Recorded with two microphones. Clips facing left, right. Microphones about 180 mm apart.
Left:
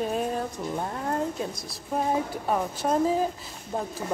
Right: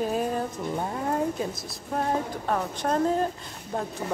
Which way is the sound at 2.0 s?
10° left (ahead or behind).